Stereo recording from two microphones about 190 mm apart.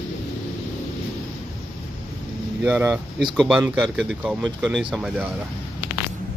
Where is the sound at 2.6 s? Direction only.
5° right (ahead or behind).